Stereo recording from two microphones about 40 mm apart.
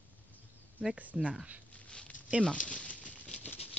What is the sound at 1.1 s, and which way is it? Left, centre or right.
Speech, centre.